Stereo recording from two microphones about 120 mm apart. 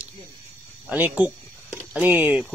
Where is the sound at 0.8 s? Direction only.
15° right (ahead or behind).